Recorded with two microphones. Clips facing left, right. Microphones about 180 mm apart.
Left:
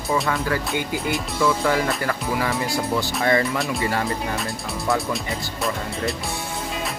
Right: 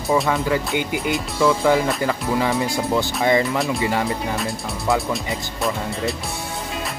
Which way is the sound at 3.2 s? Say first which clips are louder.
Right 2 dB; 20° right (ahead or behind).